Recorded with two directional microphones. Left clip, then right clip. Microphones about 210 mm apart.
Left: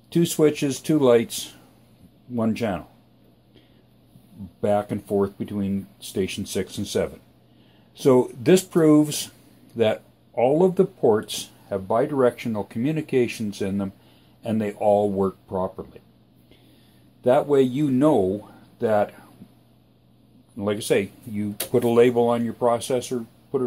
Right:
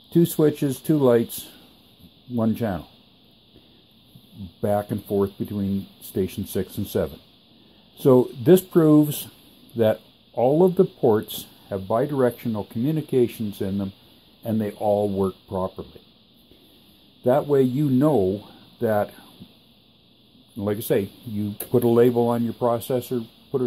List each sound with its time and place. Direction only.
0.1 s speech: 30° right (ahead or behind)
2.3 s speech: 25° right (ahead or behind)
4.6 s speech: 30° right (ahead or behind)
17.2 s speech: 25° right (ahead or behind)
20.5 s speech: 30° right (ahead or behind)